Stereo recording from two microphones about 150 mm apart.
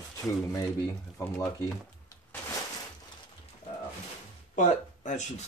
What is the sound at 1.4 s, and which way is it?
Speech, 20° left (ahead or behind).